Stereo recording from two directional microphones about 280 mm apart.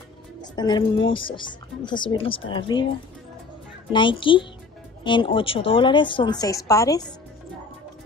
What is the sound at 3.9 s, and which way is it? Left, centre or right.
A woman's voice, centre.